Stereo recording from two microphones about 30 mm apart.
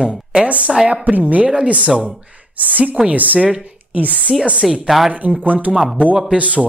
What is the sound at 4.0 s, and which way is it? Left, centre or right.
Speech, right.